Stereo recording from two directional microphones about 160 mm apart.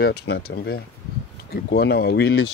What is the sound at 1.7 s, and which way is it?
Speech, 85° left.